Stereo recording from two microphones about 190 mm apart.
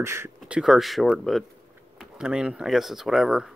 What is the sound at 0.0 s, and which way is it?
Speech, 15° right (ahead or behind).